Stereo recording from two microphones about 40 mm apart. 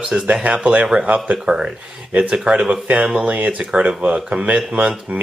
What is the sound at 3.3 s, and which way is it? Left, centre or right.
Speech, right.